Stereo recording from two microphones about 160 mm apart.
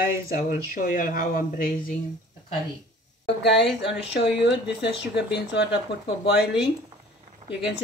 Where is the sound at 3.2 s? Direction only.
90° left.